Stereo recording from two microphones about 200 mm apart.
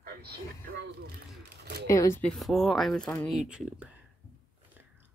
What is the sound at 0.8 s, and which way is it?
Speech, 55° right (ahead or behind).